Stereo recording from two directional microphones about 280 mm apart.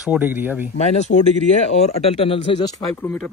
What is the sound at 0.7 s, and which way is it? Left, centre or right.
Speech, left.